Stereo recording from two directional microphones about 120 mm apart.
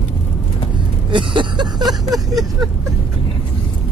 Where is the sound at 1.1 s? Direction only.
40° right (ahead or behind).